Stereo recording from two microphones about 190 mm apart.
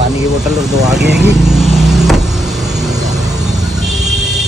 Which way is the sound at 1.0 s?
65° right (ahead or behind).